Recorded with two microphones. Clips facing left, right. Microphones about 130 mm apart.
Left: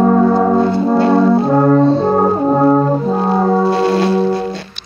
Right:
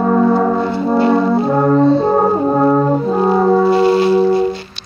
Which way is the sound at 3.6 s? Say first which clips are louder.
Right 2 dB; 10° right (ahead or behind).